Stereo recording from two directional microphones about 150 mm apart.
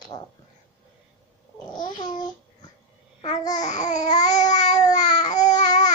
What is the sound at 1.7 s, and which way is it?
Babbling, 30° left (ahead or behind).